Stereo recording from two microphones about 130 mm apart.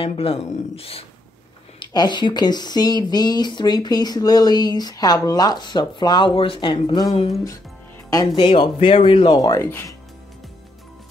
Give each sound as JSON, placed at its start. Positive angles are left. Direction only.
{"t": 0.0, "sound": "speech", "side_deg": 45}
{"t": 1.8, "sound": "speech", "side_deg": 35}
{"t": 7.2, "sound": "speech", "side_deg": 50}